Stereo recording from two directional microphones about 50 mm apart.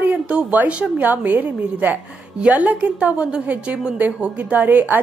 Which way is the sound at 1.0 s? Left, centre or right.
Right.